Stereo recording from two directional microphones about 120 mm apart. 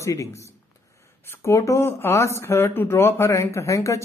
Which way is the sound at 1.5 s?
25° left (ahead or behind).